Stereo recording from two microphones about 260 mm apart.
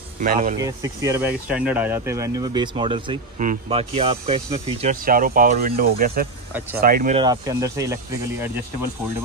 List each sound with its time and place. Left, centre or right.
0.2 s speech: right
0.6 s speech: centre
5.0 s speech: right
7.2 s speech: centre